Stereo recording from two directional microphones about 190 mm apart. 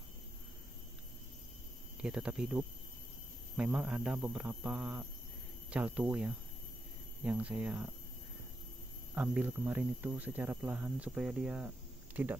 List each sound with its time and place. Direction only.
2.0 s speech: 5° right (ahead or behind)
9.1 s speech: 5° right (ahead or behind)